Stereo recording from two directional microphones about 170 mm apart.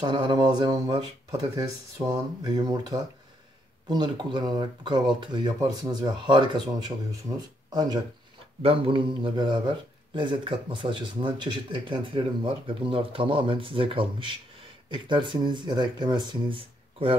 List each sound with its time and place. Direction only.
0.0 s speech: 25° right (ahead or behind)